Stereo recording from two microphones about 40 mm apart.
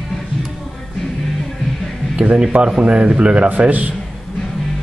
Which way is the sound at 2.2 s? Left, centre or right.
Centre.